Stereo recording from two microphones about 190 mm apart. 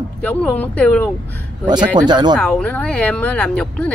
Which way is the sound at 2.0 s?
20° right (ahead or behind).